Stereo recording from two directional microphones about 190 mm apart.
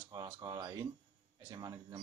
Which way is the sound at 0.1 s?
20° right (ahead or behind).